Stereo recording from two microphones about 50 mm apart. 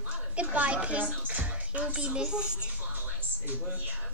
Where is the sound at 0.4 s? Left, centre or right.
Right.